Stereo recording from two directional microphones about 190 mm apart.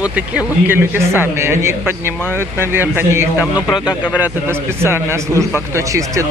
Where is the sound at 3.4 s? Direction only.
20° left (ahead or behind).